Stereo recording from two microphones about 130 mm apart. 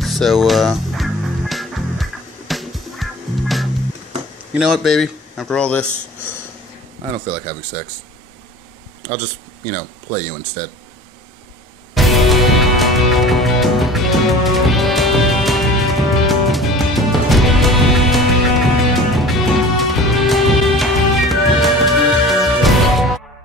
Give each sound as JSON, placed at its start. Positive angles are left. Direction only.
{"t": 0.0, "sound": "music", "side_deg": 0}
{"t": 4.6, "sound": "speech", "side_deg": -5}
{"t": 9.7, "sound": "speech", "side_deg": 20}
{"t": 11.9, "sound": "music", "side_deg": 0}